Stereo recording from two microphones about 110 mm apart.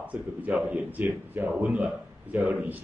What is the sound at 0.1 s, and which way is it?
Speech, 15° right (ahead or behind).